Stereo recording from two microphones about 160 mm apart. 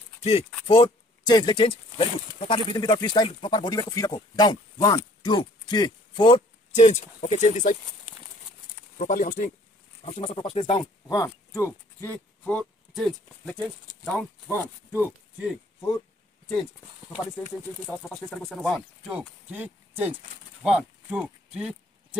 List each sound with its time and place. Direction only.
0.2 s speech: 40° left (ahead or behind)
0.7 s speech: 25° left (ahead or behind)
2.7 s speech: 25° left (ahead or behind)
6.7 s speech: 45° left (ahead or behind)
8.9 s speech: 55° left (ahead or behind)
10.0 s speech: 35° left (ahead or behind); by 13.6 s 5° left (ahead or behind)
14.1 s speech: 15° left (ahead or behind)
17.8 s speech: 5° left (ahead or behind)
19.0 s speech: 5° right (ahead or behind)